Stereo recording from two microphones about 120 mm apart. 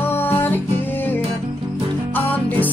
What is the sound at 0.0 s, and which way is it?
Music, 15° left (ahead or behind).